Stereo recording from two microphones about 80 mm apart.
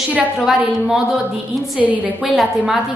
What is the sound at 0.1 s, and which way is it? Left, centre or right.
Speech, centre.